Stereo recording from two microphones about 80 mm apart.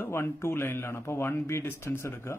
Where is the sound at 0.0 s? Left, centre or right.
Left.